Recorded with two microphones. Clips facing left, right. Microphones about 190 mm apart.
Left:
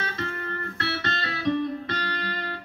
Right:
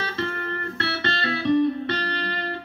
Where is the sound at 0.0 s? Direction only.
30° right (ahead or behind).